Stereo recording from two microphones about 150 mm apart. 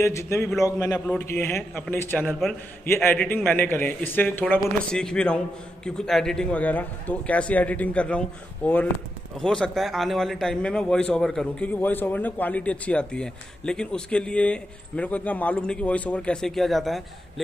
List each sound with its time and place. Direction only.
0.0 s a man's voice: 20° left (ahead or behind); by 17.0 s centre (ahead or behind)